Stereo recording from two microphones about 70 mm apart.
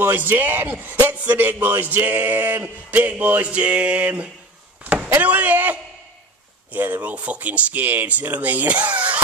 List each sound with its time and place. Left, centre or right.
0.0 s speech: right
2.9 s speech: right
4.8 s a sound: centre
5.1 s speech: right